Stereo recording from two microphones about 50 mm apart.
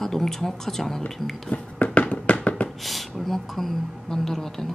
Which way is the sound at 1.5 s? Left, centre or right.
Left.